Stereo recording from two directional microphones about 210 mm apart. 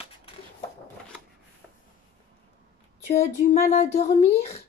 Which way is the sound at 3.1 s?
35° left (ahead or behind).